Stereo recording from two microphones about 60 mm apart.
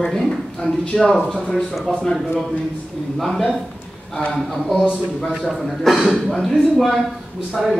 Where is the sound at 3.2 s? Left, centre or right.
Centre.